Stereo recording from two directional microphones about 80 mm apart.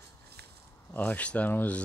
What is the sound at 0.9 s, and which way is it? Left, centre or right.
Speech, left.